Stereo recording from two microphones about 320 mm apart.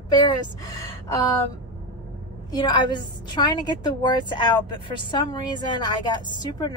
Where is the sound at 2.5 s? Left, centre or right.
Centre.